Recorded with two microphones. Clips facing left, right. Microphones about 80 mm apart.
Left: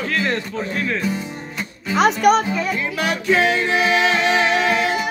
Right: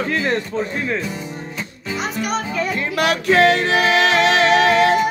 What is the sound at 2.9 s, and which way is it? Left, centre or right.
Music, right.